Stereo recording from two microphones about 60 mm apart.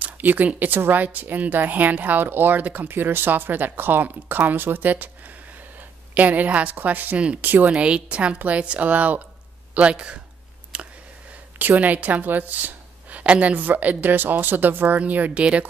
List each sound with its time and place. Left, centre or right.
0.0 s a sound: right
0.5 s a woman's voice: right
6.1 s a woman's voice: right
7.7 s a woman's voice: centre
10.7 s a sound: centre
11.7 s a woman's voice: right